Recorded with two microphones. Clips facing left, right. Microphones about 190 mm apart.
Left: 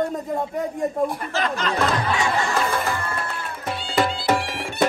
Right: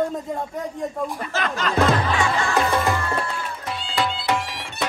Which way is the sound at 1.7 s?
40° left (ahead or behind).